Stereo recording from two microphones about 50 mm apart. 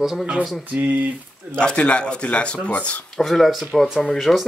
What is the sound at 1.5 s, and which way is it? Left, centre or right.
Speech, left.